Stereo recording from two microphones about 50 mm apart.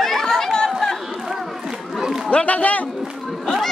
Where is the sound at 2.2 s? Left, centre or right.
Left.